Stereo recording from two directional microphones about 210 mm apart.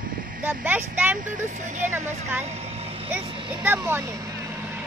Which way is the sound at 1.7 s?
35° right (ahead or behind).